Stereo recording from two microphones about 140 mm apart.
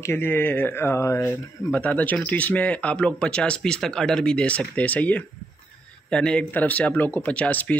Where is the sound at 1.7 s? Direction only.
10° left (ahead or behind).